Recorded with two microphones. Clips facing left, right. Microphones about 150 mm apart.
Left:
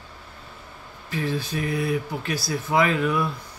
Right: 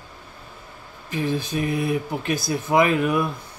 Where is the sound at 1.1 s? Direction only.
15° right (ahead or behind).